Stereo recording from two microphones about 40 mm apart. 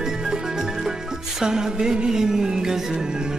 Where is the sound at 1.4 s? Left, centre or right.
Centre.